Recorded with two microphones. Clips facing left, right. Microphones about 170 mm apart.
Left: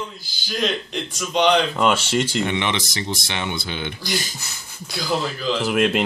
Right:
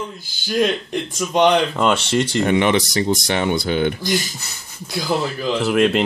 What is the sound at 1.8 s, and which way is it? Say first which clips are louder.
Speech: right 2 dB; centre (ahead or behind).